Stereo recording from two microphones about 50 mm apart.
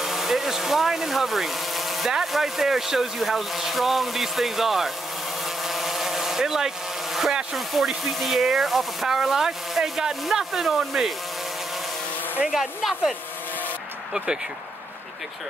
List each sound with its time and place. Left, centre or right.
0.0 s speech: centre
5.4 s a sound: centre
7.5 s speech: centre
12.4 s speech: centre
14.1 s speech: centre